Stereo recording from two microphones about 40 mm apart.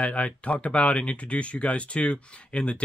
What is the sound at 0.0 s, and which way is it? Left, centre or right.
Speech, left.